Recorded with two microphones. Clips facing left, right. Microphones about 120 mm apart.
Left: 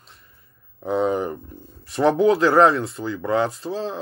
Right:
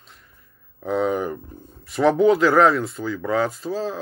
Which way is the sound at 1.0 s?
30° left (ahead or behind).